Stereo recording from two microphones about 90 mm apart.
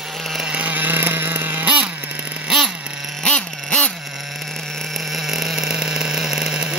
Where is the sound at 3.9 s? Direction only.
Centre (ahead or behind).